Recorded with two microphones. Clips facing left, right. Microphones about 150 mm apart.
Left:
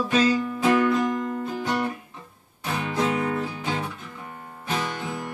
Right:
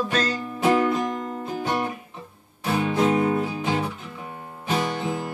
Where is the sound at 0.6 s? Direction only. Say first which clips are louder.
Right 1 dB; 25° right (ahead or behind).